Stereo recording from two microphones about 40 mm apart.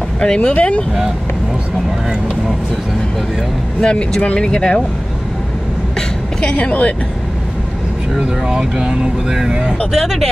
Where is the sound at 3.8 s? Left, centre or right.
Left.